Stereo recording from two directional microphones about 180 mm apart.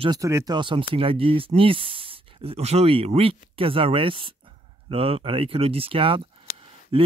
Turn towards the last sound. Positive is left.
turn(degrees=-30)  # may be behind; listen again after turning